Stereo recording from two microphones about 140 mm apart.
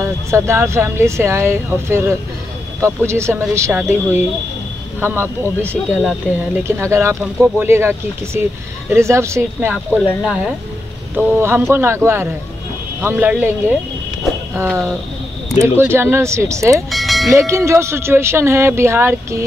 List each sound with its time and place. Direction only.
0.3 s speech: 20° right (ahead or behind)
6.8 s speech: 20° right (ahead or behind)
14.7 s speech: centre (ahead or behind)
15.6 s speech: 15° right (ahead or behind)
16.9 s music: centre (ahead or behind)
17.3 s speech: 20° right (ahead or behind)